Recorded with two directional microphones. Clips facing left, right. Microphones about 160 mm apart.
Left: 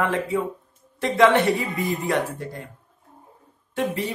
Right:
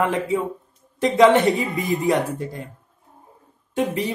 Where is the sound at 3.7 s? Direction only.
20° right (ahead or behind).